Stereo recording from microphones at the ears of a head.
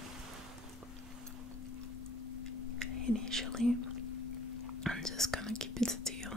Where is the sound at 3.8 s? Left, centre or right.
Left.